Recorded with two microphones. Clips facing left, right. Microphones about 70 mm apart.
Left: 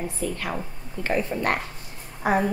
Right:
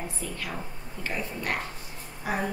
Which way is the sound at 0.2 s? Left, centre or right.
Left.